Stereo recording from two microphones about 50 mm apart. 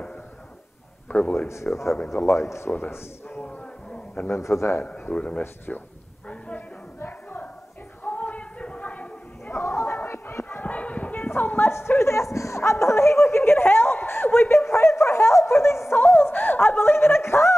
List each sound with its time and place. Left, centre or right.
1.6 s speech: left
2.1 s speech: left
2.7 s speech: left
3.4 s a sound: left
4.4 s a man's voice: left
5.1 s speech: left
7.0 s music: left
8.0 s a sound: left
9.5 s chatter: left
10.0 s a sound: left
10.6 s a sound: left
12.0 s speech: left
16.2 s speech: left